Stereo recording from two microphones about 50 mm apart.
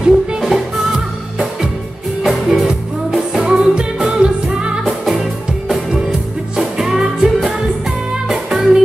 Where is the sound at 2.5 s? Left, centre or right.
Centre.